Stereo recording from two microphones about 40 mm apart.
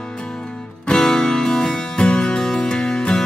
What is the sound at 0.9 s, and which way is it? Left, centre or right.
Music, centre.